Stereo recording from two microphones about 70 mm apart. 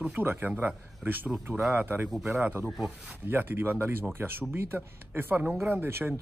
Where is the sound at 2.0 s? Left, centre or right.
Centre.